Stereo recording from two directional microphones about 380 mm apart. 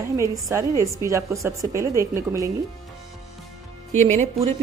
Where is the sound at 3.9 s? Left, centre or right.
Centre.